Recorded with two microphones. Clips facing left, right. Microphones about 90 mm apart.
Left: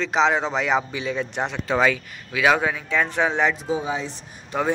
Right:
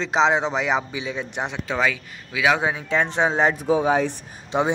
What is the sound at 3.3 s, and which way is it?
Speech, 35° right (ahead or behind).